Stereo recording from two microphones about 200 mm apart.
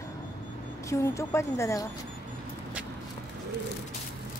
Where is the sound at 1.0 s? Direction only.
15° left (ahead or behind).